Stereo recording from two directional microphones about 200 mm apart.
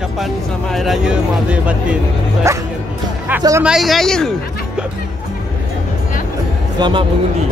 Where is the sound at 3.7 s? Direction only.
Centre (ahead or behind).